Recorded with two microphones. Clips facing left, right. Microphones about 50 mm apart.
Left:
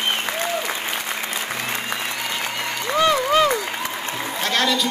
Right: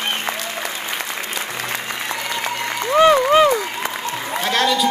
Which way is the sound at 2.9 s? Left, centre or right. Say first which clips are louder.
Right 5 dB; right.